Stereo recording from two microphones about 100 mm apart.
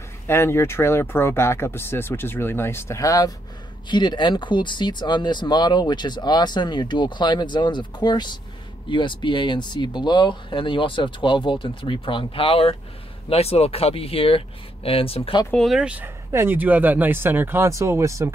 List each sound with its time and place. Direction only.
0.3 s speech: 25° left (ahead or behind)
3.9 s speech: 50° left (ahead or behind); by 12.7 s 70° left (ahead or behind)
13.3 s speech: 90° left; by 15.3 s 70° left (ahead or behind)
15.5 s speech: centre (ahead or behind)
15.8 s speech: 15° right (ahead or behind); by 18.3 s 30° right (ahead or behind)